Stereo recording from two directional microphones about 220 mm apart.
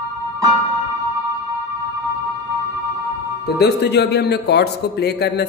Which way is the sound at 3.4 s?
50° left (ahead or behind).